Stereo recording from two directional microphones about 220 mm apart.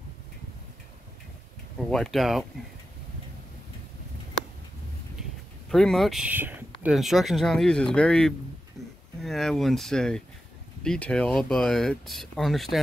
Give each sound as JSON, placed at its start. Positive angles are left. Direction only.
{"t": 1.9, "sound": "speech", "side_deg": 0}
{"t": 5.7, "sound": "speech", "side_deg": 0}